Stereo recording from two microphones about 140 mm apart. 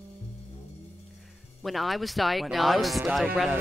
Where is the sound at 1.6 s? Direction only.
Centre (ahead or behind).